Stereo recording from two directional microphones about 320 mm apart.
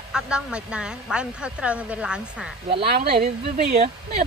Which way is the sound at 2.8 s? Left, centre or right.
Right.